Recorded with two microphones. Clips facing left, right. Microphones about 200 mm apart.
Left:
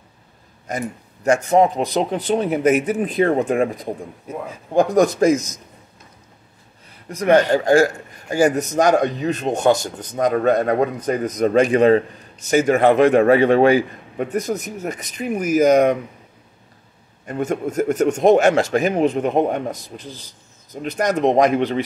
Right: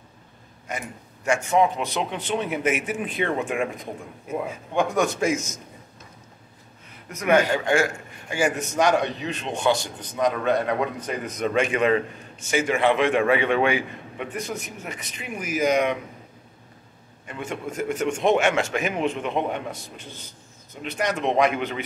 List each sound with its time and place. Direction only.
0.7 s a man's voice: 40° left (ahead or behind)
7.1 s a man's voice: 35° left (ahead or behind)
17.3 s a man's voice: 40° left (ahead or behind)